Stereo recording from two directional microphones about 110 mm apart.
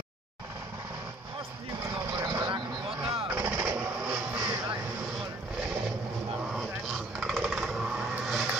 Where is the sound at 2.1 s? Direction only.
40° right (ahead or behind).